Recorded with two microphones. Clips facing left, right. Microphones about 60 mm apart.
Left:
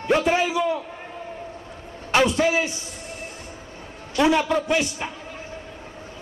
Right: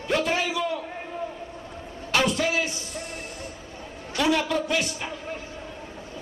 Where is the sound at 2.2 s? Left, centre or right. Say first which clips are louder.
Left 4 dB; centre.